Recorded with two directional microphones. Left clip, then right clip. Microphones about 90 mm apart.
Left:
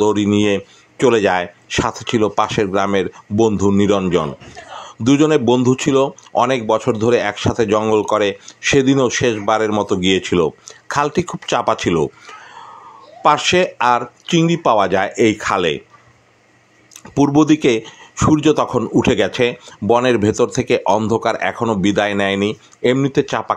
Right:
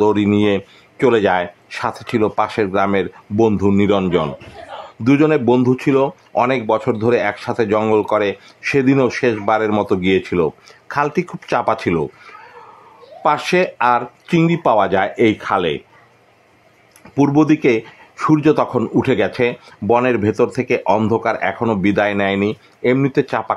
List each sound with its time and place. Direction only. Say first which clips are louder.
0.0 s speech: even; 15° left (ahead or behind)
5.0 s speech: even; 35° left (ahead or behind)
6.5 s speech: left 1 dB; 20° left (ahead or behind)
13.2 s speech: left 2 dB; 25° left (ahead or behind)
17.1 s speech: left 1 dB; 45° left (ahead or behind)
17.6 s speech: even; 25° left (ahead or behind)
18.1 s speech: even; 35° left (ahead or behind); by 23.5 s 15° left (ahead or behind)